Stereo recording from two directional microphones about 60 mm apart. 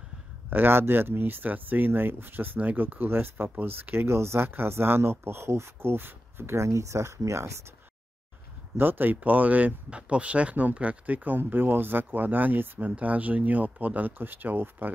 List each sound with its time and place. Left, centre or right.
0.5 s speech: right
8.7 s speech: right